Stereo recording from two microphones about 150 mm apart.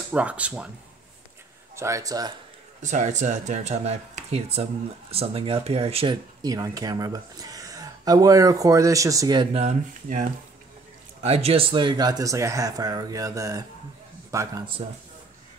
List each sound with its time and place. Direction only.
0.1 s speech: 10° right (ahead or behind)
1.8 s speech: 20° right (ahead or behind)
2.8 s speech: 55° right (ahead or behind)
6.4 s speech: 25° right (ahead or behind)
9.6 s speech: 55° right (ahead or behind)
11.2 s speech: 40° right (ahead or behind); by 14.6 s 20° right (ahead or behind)
14.8 s speech: 40° right (ahead or behind)